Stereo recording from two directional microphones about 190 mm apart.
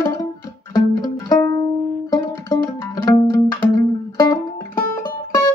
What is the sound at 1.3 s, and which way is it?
Music, 20° left (ahead or behind).